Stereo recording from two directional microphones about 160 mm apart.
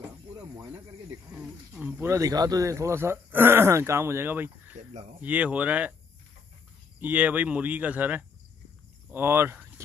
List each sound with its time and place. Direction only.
0.3 s snake: 25° right (ahead or behind)
1.3 s speech: 10° right (ahead or behind)
7.0 s speech: 10° right (ahead or behind)